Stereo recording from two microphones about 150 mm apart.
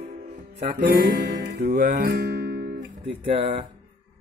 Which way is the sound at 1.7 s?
90° right.